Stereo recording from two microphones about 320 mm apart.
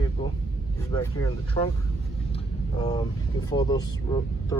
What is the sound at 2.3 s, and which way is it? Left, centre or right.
Vehicle, centre.